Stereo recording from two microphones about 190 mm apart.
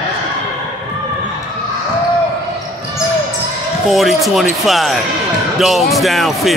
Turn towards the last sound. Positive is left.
turn(degrees=0)  # may be behind; listen again after turning